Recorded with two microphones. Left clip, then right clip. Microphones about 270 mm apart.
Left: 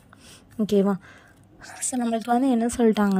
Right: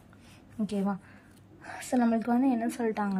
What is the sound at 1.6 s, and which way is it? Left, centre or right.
Speech, centre.